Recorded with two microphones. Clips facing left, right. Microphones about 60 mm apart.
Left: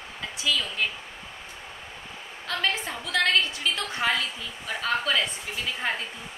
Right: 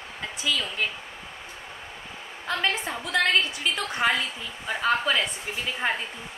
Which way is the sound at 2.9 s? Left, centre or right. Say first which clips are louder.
Right 1 dB; right.